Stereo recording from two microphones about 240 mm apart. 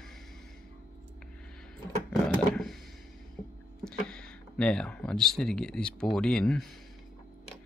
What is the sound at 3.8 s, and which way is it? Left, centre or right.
Speech, centre.